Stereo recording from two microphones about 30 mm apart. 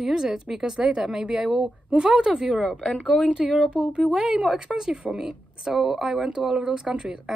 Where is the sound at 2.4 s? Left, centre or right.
Centre.